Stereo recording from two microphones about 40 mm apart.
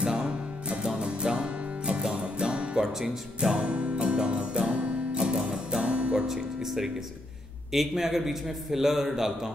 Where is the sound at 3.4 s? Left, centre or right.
Right.